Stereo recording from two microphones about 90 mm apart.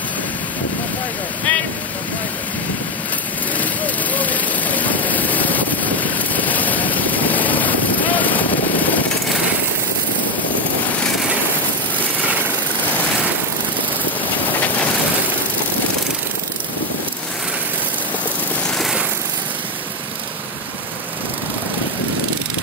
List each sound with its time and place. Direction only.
1.5 s speech: 15° left (ahead or behind)
3.5 s vehicle: 20° left (ahead or behind)